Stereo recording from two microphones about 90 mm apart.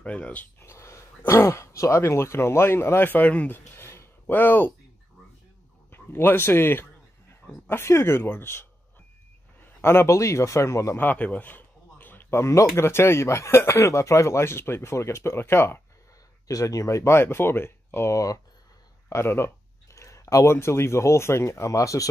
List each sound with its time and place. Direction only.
0.0 s speech: 15° left (ahead or behind)
0.6 s speech: 30° left (ahead or behind)
5.9 s a man's voice: 25° left (ahead or behind)
9.8 s speech: 30° left (ahead or behind)
11.0 s a sound: 20° left (ahead or behind)
12.7 s speech: 30° left (ahead or behind)
16.4 s speech: 40° left (ahead or behind)